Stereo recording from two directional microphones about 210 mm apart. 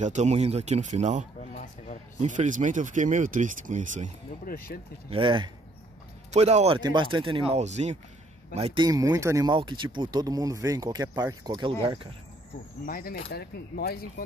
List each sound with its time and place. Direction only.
0.0 s speech: 35° right (ahead or behind)
4.5 s speech: 45° left (ahead or behind)
5.1 s speech: 25° right (ahead or behind)
12.8 s speech: 45° left (ahead or behind)